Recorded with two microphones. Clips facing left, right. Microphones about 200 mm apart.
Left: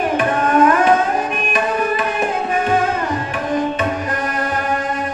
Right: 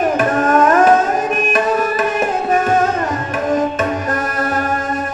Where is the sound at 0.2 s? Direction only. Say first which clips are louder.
Left 1 dB; 45° right (ahead or behind).